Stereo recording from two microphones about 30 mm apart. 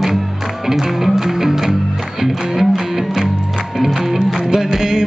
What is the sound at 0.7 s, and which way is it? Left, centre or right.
Music, centre.